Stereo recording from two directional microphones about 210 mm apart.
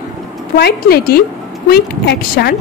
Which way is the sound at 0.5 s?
45° left (ahead or behind).